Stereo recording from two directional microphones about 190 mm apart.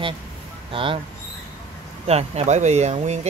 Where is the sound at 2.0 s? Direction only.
35° right (ahead or behind).